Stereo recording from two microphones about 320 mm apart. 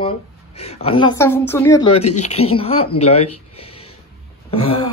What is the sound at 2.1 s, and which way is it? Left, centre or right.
Speech, left.